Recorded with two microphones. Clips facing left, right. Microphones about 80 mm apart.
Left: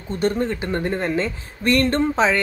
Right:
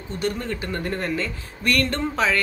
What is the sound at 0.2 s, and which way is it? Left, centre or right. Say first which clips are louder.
Speech: left 5 dB; left.